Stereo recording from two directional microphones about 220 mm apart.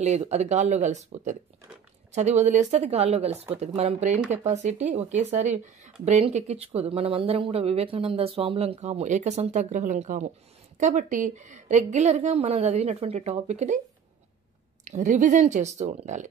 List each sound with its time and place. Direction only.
0.0 s a woman's voice: 30° right (ahead or behind)
14.9 s a woman's voice: 35° right (ahead or behind)